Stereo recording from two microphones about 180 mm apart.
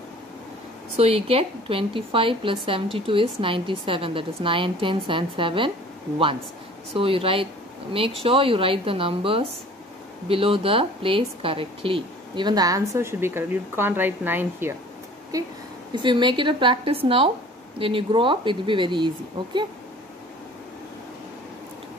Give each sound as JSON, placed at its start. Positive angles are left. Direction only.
{"t": 0.9, "sound": "a woman's voice", "side_deg": -35}
{"t": 6.9, "sound": "a woman's voice", "side_deg": -30}
{"t": 15.9, "sound": "a woman's voice", "side_deg": -25}